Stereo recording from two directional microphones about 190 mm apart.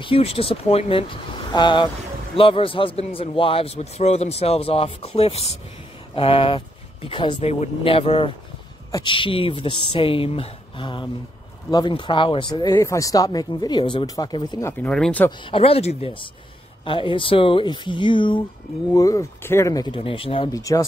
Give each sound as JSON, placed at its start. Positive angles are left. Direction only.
{"t": 0.0, "sound": "a man's voice", "side_deg": 30}
{"t": 15.4, "sound": "a man's voice", "side_deg": 30}